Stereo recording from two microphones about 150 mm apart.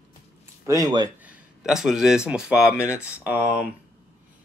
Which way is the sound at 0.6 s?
25° right (ahead or behind).